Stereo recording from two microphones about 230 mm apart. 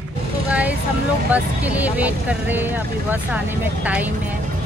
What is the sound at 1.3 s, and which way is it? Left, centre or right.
Speech, centre.